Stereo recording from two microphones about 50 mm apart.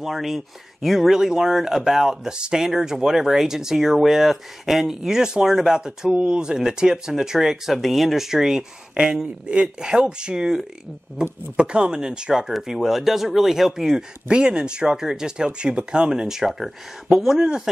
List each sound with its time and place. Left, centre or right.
0.0 s speech: centre
8.9 s speech: right
12.5 s speech: centre